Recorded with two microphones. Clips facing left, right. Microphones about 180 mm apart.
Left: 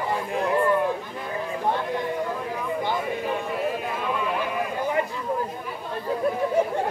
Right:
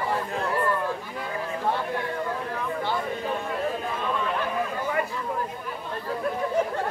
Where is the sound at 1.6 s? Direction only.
15° left (ahead or behind).